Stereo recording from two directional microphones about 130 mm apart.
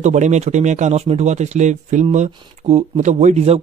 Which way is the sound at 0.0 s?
65° right (ahead or behind).